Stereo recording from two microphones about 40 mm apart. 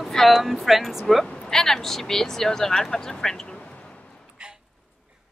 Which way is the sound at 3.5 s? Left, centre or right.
Left.